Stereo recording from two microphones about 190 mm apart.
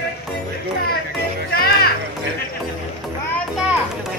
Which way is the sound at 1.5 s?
55° left (ahead or behind).